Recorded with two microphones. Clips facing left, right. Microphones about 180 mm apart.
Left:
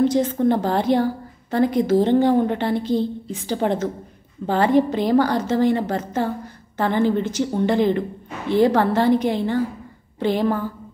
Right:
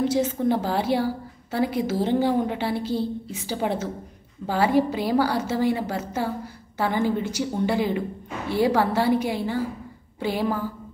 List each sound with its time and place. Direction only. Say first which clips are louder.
0.0 s a woman's voice: left 4 dB; 10° right (ahead or behind)